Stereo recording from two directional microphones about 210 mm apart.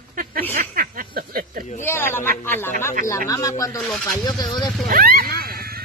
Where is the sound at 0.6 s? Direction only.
40° right (ahead or behind).